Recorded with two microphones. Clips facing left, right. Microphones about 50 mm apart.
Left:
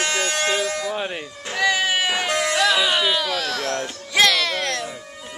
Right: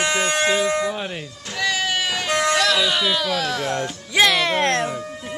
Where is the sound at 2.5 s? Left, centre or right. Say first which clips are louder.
Left 3 dB; centre.